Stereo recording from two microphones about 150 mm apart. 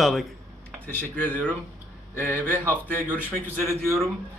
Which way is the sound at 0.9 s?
10° left (ahead or behind).